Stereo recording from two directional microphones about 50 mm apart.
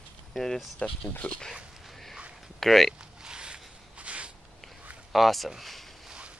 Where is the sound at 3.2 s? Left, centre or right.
Centre.